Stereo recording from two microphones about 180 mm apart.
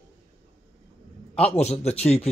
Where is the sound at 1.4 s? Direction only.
35° left (ahead or behind).